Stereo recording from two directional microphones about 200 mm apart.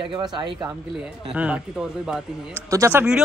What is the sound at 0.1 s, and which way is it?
Speech, 20° right (ahead or behind).